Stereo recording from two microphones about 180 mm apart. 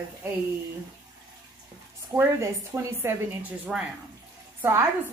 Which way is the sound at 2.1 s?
15° right (ahead or behind).